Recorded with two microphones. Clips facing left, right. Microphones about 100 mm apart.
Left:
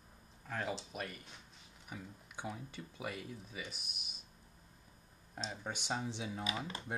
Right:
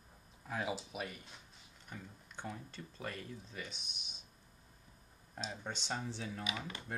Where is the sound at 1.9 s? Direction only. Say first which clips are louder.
Left 2 dB; 10° left (ahead or behind).